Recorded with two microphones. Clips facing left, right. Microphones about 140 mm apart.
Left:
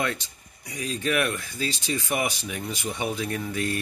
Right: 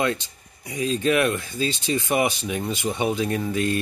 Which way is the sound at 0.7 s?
25° right (ahead or behind).